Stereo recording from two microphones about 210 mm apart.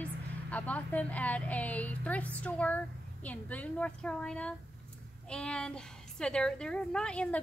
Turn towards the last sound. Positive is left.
turn(degrees=5)  # may be behind; listen again after turning